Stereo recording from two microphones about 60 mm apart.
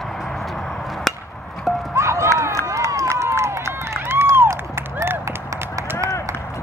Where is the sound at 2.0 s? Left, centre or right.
Right.